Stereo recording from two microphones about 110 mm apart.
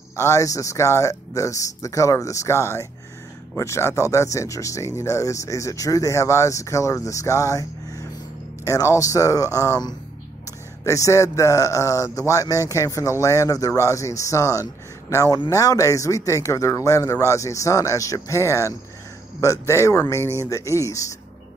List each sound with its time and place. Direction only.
0.1 s speech: 30° left (ahead or behind)